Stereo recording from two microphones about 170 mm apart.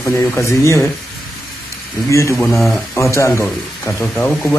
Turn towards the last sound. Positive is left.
turn(degrees=10)  # may be behind; listen again after turning